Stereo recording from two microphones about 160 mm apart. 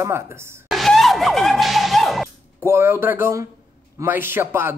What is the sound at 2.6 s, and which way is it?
Speech, 15° right (ahead or behind).